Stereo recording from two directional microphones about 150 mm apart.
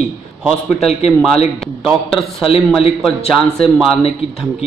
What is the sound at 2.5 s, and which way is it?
Speech, 40° left (ahead or behind).